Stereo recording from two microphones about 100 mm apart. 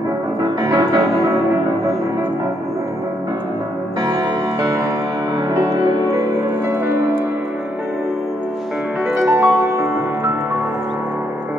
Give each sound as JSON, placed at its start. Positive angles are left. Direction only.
{"t": 0.4, "sound": "music", "side_deg": -40}
{"t": 4.0, "sound": "music", "side_deg": -40}
{"t": 9.2, "sound": "music", "side_deg": -25}